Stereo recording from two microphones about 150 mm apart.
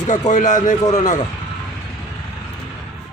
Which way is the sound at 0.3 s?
55° left (ahead or behind).